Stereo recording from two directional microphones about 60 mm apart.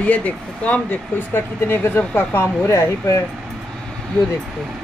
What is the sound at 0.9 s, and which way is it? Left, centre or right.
Speech, left.